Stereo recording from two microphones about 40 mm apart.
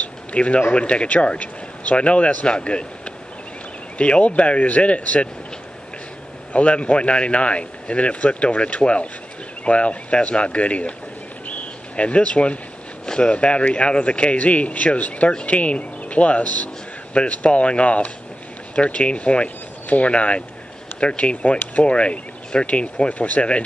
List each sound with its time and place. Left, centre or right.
0.0 s speech: left
4.0 s a man's voice: left
6.5 s a man's voice: left
11.4 s a sound: left
13.0 s speech: centre
13.3 s a man's voice: left